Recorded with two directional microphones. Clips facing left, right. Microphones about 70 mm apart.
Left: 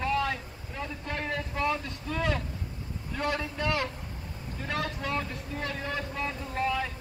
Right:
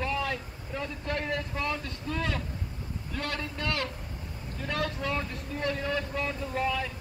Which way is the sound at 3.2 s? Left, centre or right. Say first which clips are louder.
Left 4 dB; centre.